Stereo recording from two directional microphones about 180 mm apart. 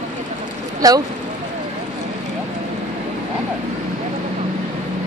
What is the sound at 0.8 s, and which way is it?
Speech, 20° right (ahead or behind).